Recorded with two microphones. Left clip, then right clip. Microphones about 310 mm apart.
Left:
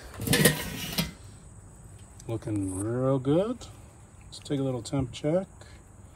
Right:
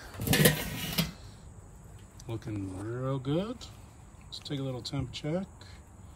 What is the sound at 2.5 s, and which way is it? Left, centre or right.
Speech, left.